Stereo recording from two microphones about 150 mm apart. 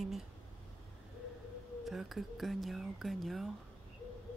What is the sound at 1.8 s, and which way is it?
Speech, centre (ahead or behind).